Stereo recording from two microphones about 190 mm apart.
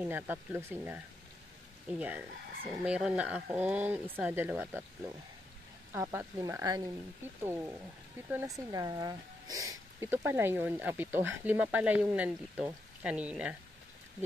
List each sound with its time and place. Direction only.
0.0 s speech: 10° right (ahead or behind)